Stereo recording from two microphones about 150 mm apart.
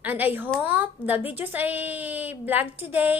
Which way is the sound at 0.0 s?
10° right (ahead or behind).